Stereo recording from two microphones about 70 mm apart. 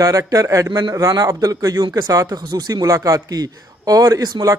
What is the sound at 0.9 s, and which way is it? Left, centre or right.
Speech, right.